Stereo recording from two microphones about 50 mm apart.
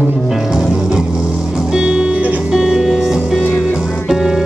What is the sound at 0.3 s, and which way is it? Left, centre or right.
Music, centre.